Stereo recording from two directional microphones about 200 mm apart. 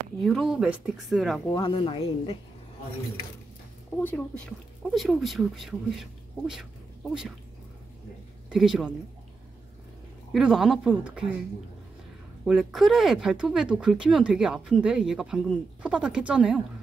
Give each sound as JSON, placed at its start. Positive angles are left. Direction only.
{"t": 0.2, "sound": "speech", "side_deg": 0}
{"t": 1.5, "sound": "speech", "side_deg": 25}
{"t": 4.0, "sound": "speech", "side_deg": 10}
{"t": 8.5, "sound": "speech", "side_deg": -5}
{"t": 10.3, "sound": "speech", "side_deg": -5}
{"t": 12.4, "sound": "speech", "side_deg": 0}